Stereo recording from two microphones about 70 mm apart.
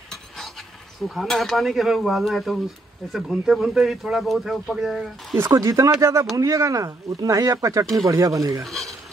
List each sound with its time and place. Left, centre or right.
1.0 s speech: centre
5.5 s speech: right
8.6 s stir: centre